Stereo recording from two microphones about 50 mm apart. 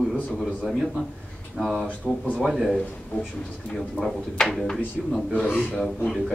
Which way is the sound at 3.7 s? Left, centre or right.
Centre.